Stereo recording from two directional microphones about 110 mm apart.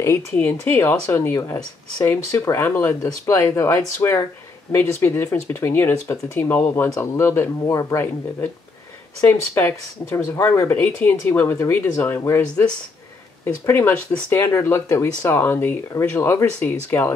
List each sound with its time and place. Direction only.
0.0 s speech: 20° left (ahead or behind)
13.7 s speech: 20° left (ahead or behind)